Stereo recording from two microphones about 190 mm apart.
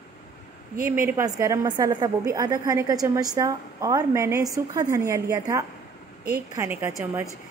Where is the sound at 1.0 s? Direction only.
15° right (ahead or behind).